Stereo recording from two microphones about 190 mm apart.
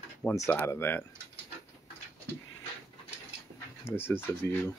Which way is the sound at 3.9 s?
10° left (ahead or behind).